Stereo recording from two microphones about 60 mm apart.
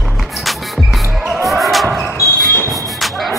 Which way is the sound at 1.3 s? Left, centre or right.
Centre.